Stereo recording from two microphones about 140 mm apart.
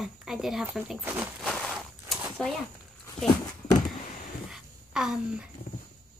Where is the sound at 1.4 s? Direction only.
5° left (ahead or behind).